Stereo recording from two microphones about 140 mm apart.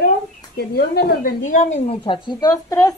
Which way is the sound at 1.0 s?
80° left.